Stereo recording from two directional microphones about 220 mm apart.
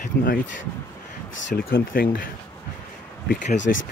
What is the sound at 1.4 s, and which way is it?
Speech, 50° left (ahead or behind).